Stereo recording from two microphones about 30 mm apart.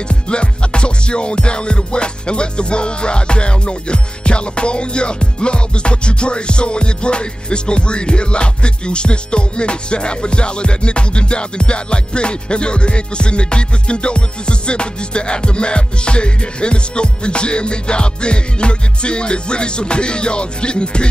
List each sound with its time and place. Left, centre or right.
0.1 s music: left